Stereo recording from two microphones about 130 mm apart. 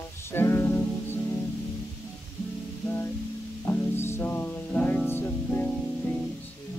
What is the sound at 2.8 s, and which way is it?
Music, 20° left (ahead or behind).